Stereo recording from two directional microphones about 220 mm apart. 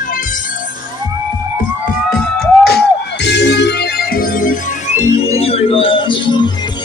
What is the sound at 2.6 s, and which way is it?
Music, 45° left (ahead or behind).